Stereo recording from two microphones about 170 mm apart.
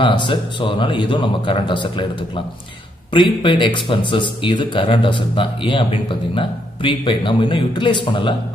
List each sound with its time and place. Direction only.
0.0 s speech: 30° left (ahead or behind)